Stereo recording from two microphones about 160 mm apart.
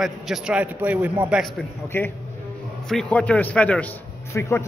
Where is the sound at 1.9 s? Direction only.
10° left (ahead or behind).